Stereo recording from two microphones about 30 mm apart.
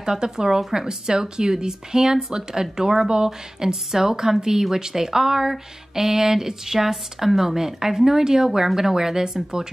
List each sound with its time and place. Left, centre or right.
0.0 s speech: right
0.8 s speech: right